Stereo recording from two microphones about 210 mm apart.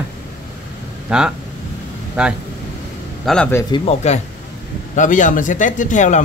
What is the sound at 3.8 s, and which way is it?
Speech, 30° left (ahead or behind).